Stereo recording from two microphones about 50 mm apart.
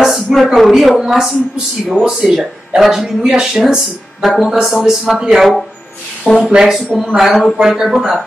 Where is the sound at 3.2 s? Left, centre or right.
Centre.